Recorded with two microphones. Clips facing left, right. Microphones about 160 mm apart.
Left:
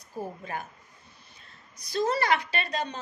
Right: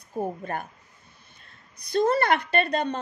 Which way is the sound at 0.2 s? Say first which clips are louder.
Right 5 dB; 55° right (ahead or behind).